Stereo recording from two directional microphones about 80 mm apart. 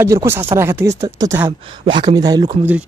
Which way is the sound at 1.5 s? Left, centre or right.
Right.